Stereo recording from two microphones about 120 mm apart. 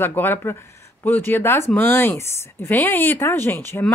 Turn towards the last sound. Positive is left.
turn(degrees=20)  # may be behind; listen again after turning